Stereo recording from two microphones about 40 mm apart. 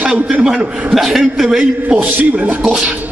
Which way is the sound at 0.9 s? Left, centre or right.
Centre.